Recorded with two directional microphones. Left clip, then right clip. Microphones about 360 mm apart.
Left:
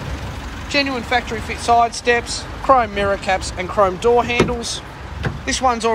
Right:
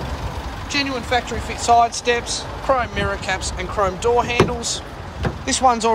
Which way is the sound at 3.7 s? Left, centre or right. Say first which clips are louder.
Left 3 dB; centre.